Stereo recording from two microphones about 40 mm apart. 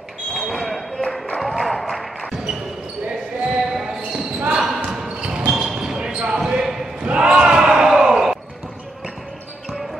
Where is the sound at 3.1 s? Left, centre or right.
Centre.